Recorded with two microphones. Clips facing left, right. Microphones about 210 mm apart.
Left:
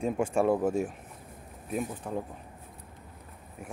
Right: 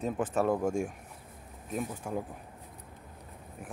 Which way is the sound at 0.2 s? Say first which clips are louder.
Left 3 dB; 10° left (ahead or behind).